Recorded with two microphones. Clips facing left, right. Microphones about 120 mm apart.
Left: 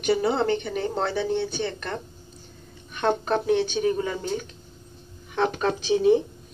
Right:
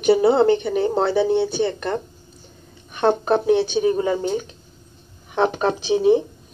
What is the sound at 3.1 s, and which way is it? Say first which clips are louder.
Speech: right 5 dB; 15° right (ahead or behind).